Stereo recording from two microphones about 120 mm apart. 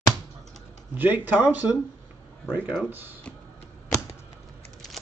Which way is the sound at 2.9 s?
15° right (ahead or behind).